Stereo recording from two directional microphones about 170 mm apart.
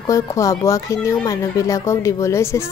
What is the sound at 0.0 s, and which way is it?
Speech, 20° left (ahead or behind).